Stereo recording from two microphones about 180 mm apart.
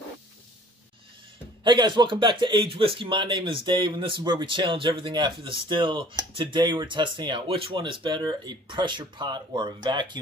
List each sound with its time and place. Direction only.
1.6 s speech: 25° right (ahead or behind)